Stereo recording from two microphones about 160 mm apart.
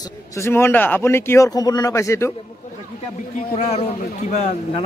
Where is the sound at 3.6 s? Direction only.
45° left (ahead or behind).